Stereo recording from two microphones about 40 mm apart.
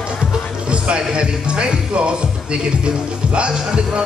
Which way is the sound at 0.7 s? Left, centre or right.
Right.